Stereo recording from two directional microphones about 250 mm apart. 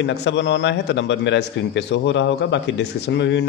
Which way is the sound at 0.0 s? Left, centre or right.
Left.